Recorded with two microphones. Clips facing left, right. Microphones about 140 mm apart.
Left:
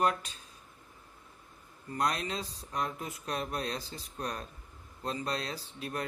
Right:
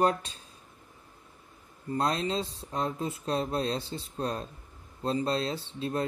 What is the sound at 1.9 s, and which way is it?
Speech, 25° right (ahead or behind).